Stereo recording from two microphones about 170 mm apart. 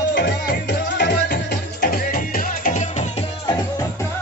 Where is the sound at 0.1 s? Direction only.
80° left; by 3.3 s 45° left (ahead or behind).